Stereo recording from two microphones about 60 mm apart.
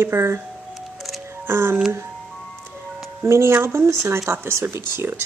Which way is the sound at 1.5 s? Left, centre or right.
Right.